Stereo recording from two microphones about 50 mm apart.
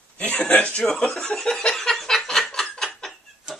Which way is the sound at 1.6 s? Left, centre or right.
Centre.